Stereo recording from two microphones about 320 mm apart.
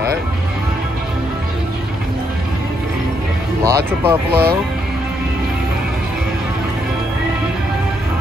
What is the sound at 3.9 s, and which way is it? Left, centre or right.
Speech, centre.